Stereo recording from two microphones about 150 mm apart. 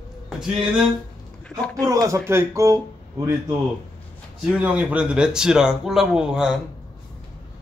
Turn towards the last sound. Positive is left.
turn(degrees=-5)  # may be behind; listen again after turning